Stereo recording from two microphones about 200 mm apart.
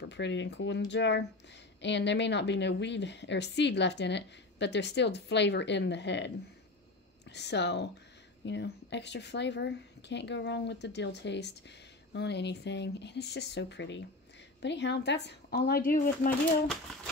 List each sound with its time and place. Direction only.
0.0 s a woman's voice: 60° left (ahead or behind); by 16.3 s 45° left (ahead or behind)
16.3 s speech: centre (ahead or behind)